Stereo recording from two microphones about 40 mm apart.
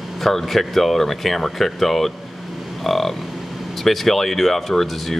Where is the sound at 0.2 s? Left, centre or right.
Centre.